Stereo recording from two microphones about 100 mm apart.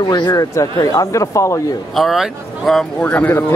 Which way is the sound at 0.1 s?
40° left (ahead or behind).